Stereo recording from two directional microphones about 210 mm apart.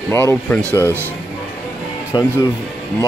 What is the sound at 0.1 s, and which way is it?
Speech, 10° left (ahead or behind).